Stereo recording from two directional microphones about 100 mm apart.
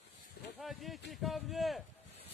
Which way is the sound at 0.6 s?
Centre (ahead or behind).